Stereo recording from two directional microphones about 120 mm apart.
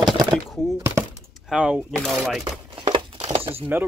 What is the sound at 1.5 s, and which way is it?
Speech, 10° right (ahead or behind).